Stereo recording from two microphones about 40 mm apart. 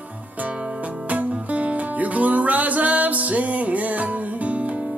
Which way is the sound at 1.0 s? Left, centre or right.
Right.